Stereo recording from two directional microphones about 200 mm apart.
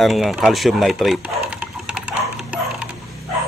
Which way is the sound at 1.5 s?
5° right (ahead or behind).